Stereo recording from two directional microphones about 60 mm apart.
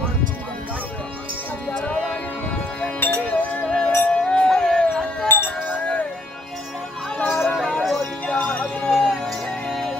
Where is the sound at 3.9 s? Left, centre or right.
Left.